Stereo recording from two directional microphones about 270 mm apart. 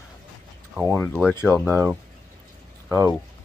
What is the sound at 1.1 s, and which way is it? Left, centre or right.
Speech, centre.